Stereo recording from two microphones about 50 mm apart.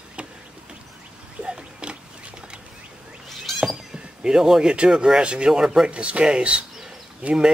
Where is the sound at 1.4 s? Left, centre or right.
Centre.